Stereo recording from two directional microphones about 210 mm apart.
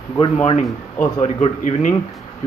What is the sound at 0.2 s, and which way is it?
A man's voice, 25° left (ahead or behind).